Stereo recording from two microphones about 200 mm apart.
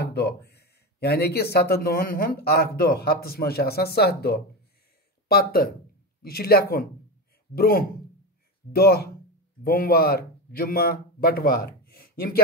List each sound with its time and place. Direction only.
0.0 s a man's voice: 55° left (ahead or behind)